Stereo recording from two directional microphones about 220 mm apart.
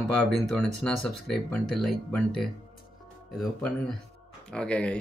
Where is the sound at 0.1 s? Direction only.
Centre (ahead or behind).